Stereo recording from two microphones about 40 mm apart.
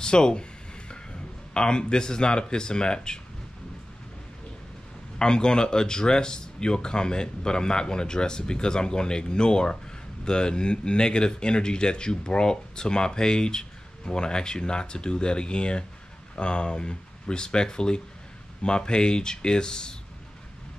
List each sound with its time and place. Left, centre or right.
0.0 s a sound: left
1.5 s speech: centre
5.2 s speech: centre